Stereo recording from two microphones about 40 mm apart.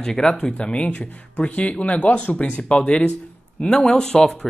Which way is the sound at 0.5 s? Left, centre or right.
Left.